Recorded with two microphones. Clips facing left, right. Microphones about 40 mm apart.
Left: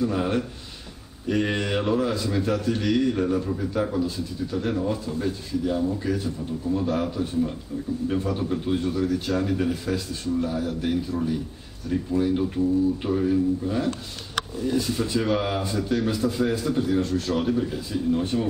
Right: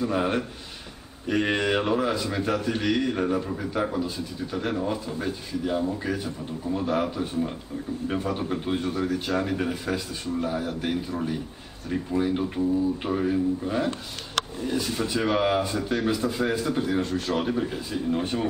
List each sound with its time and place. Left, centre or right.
0.0 s a man's voice: centre